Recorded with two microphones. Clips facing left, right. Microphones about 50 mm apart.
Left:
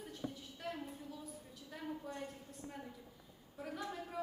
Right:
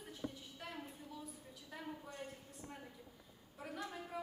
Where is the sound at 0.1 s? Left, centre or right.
Centre.